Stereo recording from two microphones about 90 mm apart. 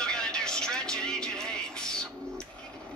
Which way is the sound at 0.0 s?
10° left (ahead or behind).